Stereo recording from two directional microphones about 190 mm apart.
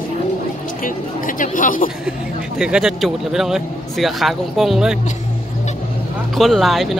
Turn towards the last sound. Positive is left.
turn(degrees=0)  # may be behind; listen again after turning